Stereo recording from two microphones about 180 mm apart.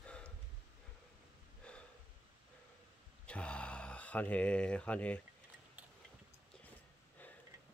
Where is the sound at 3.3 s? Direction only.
5° left (ahead or behind).